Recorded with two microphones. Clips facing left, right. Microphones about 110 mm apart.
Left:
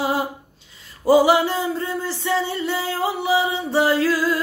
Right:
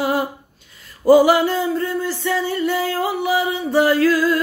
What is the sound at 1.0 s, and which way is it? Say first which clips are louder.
Music: right 3 dB; 25° left (ahead or behind).